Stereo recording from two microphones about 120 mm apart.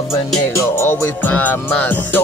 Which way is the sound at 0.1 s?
25° left (ahead or behind).